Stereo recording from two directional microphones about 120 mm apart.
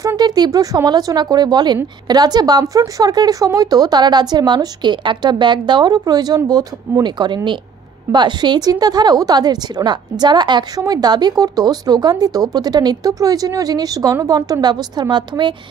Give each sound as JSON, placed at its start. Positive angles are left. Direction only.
{"t": 0.0, "sound": "a woman's voice", "side_deg": -30}